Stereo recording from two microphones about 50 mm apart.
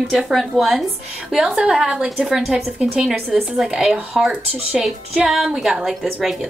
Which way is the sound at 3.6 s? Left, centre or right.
Centre.